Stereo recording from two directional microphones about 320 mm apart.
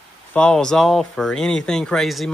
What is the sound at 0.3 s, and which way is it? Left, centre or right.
Speech, centre.